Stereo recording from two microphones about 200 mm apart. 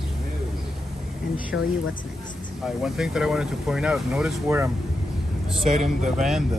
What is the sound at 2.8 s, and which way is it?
Speech, centre (ahead or behind).